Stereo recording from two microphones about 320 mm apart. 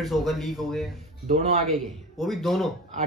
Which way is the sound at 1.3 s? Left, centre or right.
Right.